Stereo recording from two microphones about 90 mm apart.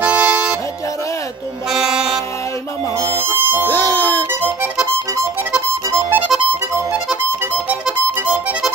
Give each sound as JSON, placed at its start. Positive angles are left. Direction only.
{"t": 0.0, "sound": "music", "side_deg": -15}
{"t": 1.7, "sound": "music", "side_deg": -5}
{"t": 3.0, "sound": "harmonica", "side_deg": -25}
{"t": 3.6, "sound": "music", "side_deg": 30}
{"t": 5.9, "sound": "music", "side_deg": -25}
{"t": 7.8, "sound": "music", "side_deg": -10}